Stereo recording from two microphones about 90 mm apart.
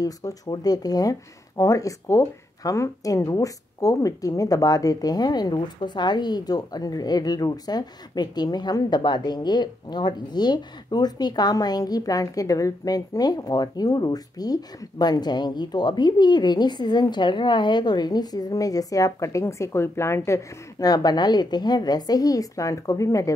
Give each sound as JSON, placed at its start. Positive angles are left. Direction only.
{"t": 0.0, "sound": "speech", "side_deg": 45}
{"t": 20.8, "sound": "speech", "side_deg": 45}